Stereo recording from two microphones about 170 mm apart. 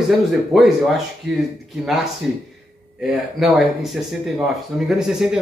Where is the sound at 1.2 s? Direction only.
90° right.